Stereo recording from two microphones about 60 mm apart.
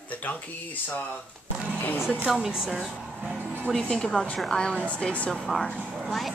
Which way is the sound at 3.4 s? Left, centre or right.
Right.